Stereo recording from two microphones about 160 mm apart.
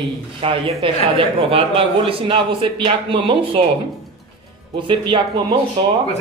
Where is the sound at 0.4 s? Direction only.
35° right (ahead or behind).